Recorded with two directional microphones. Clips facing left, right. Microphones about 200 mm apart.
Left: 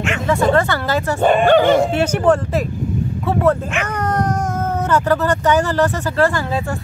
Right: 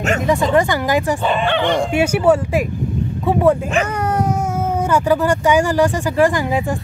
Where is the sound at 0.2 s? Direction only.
15° right (ahead or behind).